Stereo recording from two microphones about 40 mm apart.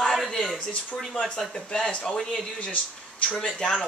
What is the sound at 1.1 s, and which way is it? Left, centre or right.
Speech, left.